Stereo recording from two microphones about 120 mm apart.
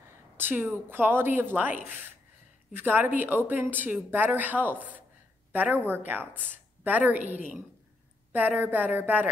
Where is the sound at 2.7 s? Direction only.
15° right (ahead or behind).